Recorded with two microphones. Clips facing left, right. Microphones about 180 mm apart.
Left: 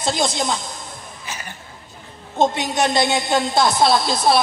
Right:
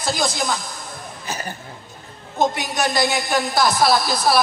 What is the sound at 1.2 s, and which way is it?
Cough, 40° right (ahead or behind).